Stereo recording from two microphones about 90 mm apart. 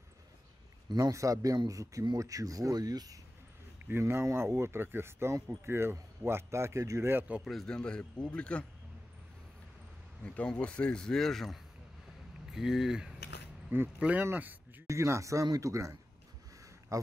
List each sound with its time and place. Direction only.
0.9 s speech: 35° right (ahead or behind)
4.0 s speech: 30° right (ahead or behind)
7.1 s speech: 20° right (ahead or behind)
7.4 s a man's voice: 5° left (ahead or behind)
10.2 s a man's voice: 10° left (ahead or behind); by 14.6 s 20° right (ahead or behind)
14.9 s speech: 35° right (ahead or behind)
16.9 s a sound: 35° right (ahead or behind)